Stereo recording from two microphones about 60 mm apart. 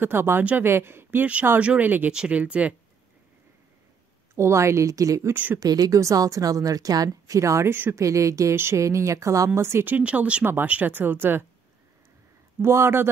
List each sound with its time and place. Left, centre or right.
0.0 s speech: right
0.4 s speech: right
0.7 s speech: right
1.6 s speech: right
2.0 s speech: centre
4.4 s speech: right
5.3 s speech: right
5.6 s speech: right
7.1 s speech: right
9.6 s speech: right
9.8 s speech: right
10.4 s speech: right
12.6 s speech: right